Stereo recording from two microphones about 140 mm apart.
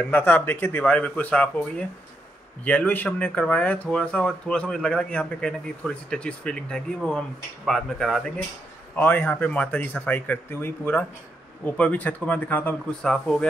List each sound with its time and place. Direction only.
0.0 s speech: 15° left (ahead or behind)
8.9 s speech: 15° left (ahead or behind)